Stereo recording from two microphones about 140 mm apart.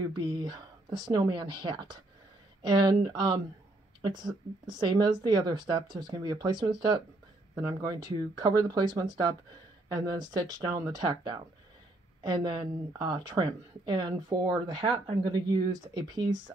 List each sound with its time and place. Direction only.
0.1 s speech: 30° right (ahead or behind)
10.0 s speech: 30° right (ahead or behind)
12.2 s speech: 35° right (ahead or behind)